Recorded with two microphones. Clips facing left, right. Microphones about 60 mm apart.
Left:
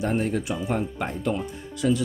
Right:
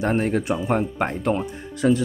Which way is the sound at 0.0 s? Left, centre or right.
Right.